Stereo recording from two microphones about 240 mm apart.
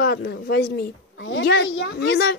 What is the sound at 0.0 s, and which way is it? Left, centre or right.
A woman's voice, left.